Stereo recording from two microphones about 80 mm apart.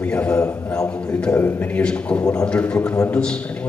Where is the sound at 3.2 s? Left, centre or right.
Centre.